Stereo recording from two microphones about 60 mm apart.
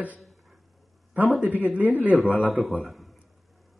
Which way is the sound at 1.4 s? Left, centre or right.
Right.